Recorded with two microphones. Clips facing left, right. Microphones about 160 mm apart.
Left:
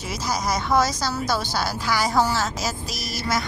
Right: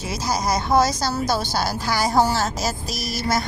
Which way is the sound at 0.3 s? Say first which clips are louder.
Right 2 dB; 30° right (ahead or behind).